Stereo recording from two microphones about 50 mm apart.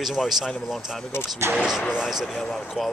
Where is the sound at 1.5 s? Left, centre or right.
Centre.